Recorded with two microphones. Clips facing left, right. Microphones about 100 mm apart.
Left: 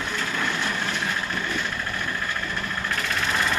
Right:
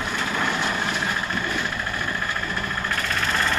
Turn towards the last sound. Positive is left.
turn(degrees=5)  # may be behind; listen again after turning